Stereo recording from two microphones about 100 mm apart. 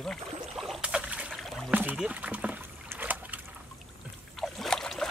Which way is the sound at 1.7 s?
15° right (ahead or behind).